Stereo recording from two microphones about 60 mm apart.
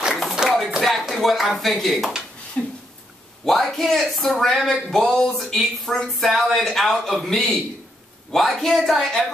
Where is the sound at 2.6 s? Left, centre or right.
Left.